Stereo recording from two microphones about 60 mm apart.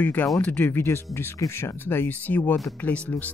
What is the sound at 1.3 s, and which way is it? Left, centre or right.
Speech, left.